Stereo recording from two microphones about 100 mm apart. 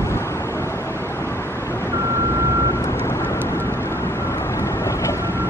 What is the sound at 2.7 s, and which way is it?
Vehicle, 25° left (ahead or behind).